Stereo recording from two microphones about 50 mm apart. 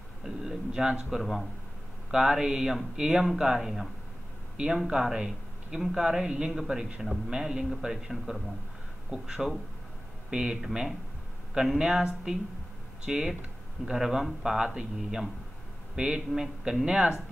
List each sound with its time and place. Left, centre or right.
0.2 s speech: centre
4.8 s speech: centre